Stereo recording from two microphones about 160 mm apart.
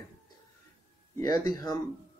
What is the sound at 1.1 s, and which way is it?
Speech, 20° left (ahead or behind).